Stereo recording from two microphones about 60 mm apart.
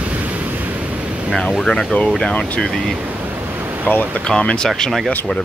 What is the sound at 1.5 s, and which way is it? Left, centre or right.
Speech, centre.